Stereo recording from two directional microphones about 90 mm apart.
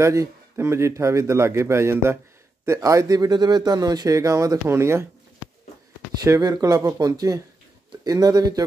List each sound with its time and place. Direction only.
0.0 s speech: 35° right (ahead or behind)
6.2 s speech: 40° right (ahead or behind)